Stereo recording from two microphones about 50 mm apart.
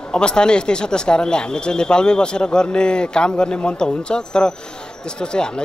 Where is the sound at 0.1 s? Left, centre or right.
Centre.